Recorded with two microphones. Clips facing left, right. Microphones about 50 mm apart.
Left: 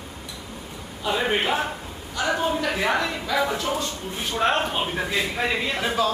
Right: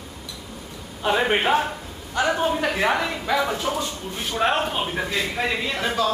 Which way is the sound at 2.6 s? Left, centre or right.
Right.